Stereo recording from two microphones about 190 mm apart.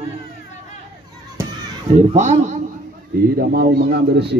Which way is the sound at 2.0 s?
35° right (ahead or behind).